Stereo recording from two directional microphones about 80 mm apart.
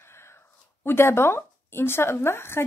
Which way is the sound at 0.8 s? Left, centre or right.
Left.